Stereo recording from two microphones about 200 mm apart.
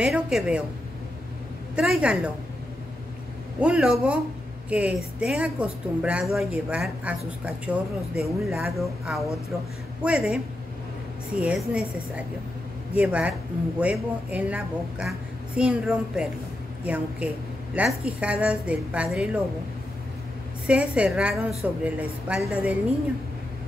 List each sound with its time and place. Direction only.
0.0 s a woman's voice: 5° right (ahead or behind)
1.8 s a woman's voice: 5° right (ahead or behind)
3.5 s a woman's voice: 5° right (ahead or behind)
11.4 s a woman's voice: 5° right (ahead or behind)
12.9 s a woman's voice: 5° right (ahead or behind)
20.6 s speech: 5° right (ahead or behind)